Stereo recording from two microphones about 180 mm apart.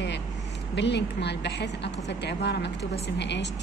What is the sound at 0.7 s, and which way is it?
Speech, 75° left (ahead or behind).